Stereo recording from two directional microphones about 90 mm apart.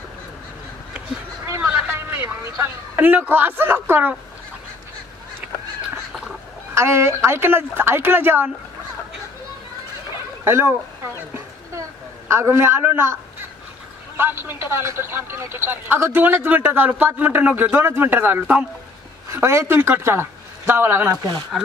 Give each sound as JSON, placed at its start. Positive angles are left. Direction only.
{"t": 1.4, "sound": "a sound", "side_deg": -30}
{"t": 1.7, "sound": "vehicle", "side_deg": -25}
{"t": 3.0, "sound": "speech", "side_deg": -20}
{"t": 5.4, "sound": "crow", "side_deg": -15}
{"t": 6.7, "sound": "speech", "side_deg": -30}
{"t": 10.4, "sound": "speech", "side_deg": -30}
{"t": 12.3, "sound": "a woman's voice", "side_deg": -30}
{"t": 19.3, "sound": "speech", "side_deg": -30}
{"t": 21.5, "sound": "speech", "side_deg": -5}